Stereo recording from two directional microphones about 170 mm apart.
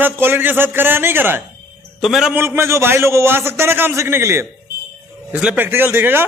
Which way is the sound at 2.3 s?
15° right (ahead or behind).